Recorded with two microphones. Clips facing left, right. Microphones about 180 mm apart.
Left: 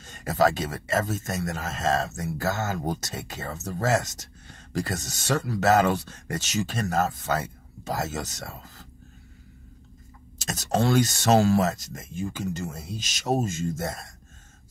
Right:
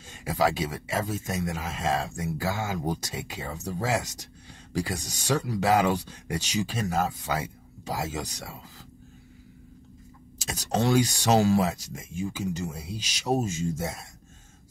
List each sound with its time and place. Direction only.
0.0 s speech: 10° right (ahead or behind)
10.4 s speech: 10° right (ahead or behind)